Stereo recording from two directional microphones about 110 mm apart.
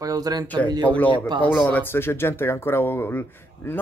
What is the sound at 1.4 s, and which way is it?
Speech, 15° left (ahead or behind).